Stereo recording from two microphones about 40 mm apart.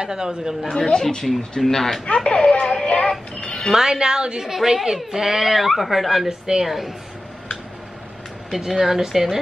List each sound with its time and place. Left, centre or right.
0.0 s a woman's voice: centre
0.7 s speech: centre
1.0 s speech: centre
2.0 s a sound: left
3.3 s music: left
3.7 s a woman's voice: centre
4.5 s a woman's voice: centre
8.5 s a woman's voice: centre